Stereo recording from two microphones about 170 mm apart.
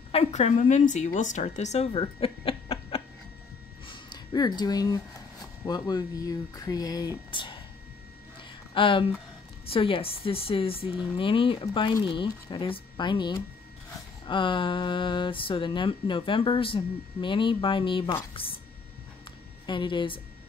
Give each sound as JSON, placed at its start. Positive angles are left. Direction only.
{"t": 0.1, "sound": "speech", "side_deg": 40}
{"t": 3.8, "sound": "a sound", "side_deg": 25}
{"t": 5.7, "sound": "speech", "side_deg": 20}
{"t": 8.7, "sound": "speech", "side_deg": 30}
{"t": 19.6, "sound": "speech", "side_deg": 25}